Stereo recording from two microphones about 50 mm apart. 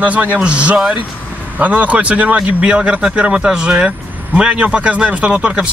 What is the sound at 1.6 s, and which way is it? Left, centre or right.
Speech, right.